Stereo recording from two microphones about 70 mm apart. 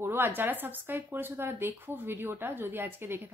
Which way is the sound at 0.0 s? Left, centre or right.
Right.